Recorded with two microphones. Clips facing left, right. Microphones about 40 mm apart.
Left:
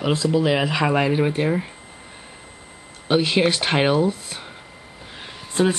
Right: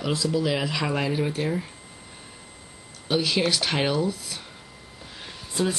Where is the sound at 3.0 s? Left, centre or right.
Left.